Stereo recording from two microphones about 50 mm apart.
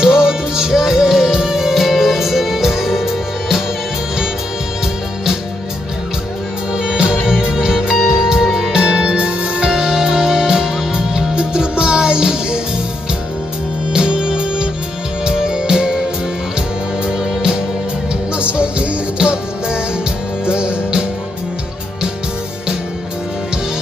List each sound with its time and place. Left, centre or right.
0.0 s music: centre
6.7 s music: centre
8.7 s music: centre
9.7 s music: centre
13.9 s music: centre
17.0 s music: centre